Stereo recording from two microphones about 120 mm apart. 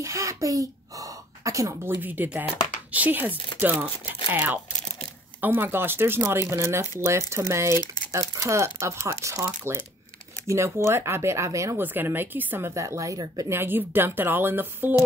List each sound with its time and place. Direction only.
0.0 s a woman's voice: 25° right (ahead or behind)
13.6 s a woman's voice: 15° right (ahead or behind)